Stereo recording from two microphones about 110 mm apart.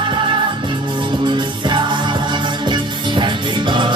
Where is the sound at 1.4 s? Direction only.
45° right (ahead or behind).